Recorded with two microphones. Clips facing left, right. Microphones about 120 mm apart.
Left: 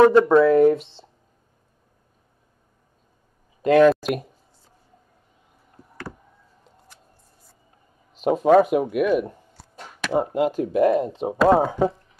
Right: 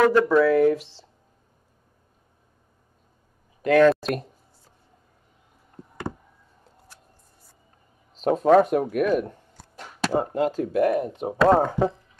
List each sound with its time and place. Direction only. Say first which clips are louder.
0.0 s speech: left 4 dB; 30° left (ahead or behind)
3.6 s speech: left 2 dB; 20° left (ahead or behind)
3.9 s speech: left 2 dB; 5° left (ahead or behind)
5.8 s a sound: right 5 dB; 20° right (ahead or behind)
8.2 s speech: left 1 dB; 5° left (ahead or behind); by 11.3 s 25° left (ahead or behind)
11.3 s speech: left 1 dB; 5° left (ahead or behind)